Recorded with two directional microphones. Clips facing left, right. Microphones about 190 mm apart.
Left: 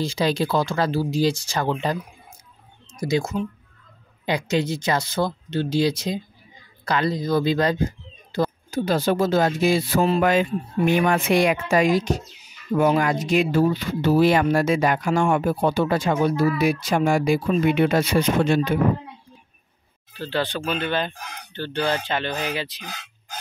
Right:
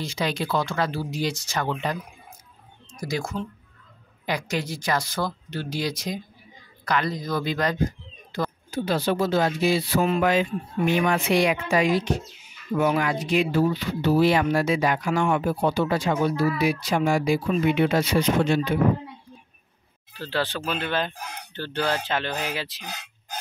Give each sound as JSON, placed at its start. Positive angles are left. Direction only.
{"t": 0.0, "sound": "speech", "side_deg": 30}
{"t": 2.9, "sound": "speech", "side_deg": 25}
{"t": 8.6, "sound": "speech", "side_deg": 45}
{"t": 20.2, "sound": "speech", "side_deg": -5}